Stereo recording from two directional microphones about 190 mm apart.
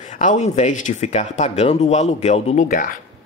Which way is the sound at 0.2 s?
40° left (ahead or behind).